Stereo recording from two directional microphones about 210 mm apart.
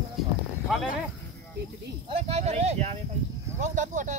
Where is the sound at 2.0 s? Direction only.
30° right (ahead or behind).